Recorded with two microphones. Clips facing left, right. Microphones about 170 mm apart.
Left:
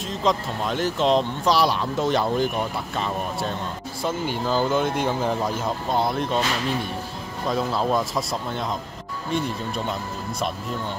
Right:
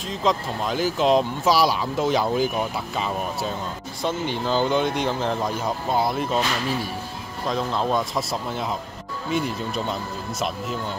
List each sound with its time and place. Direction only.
0.1 s speech: centre (ahead or behind)